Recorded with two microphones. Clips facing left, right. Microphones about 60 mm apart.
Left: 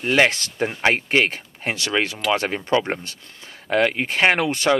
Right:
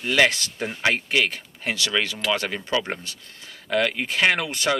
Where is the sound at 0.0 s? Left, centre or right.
Left.